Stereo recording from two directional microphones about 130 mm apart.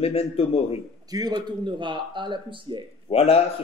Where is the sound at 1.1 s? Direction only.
30° right (ahead or behind).